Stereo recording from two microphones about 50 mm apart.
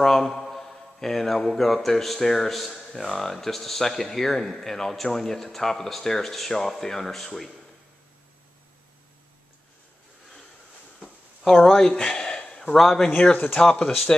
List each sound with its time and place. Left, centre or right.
0.0 s speech: centre
11.4 s speech: centre
11.8 s a sound: centre
12.7 s speech: centre
13.2 s speech: left